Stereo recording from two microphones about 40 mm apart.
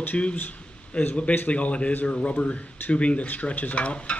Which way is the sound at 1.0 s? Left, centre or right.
Left.